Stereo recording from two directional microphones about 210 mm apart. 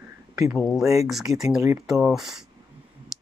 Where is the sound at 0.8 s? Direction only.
15° right (ahead or behind).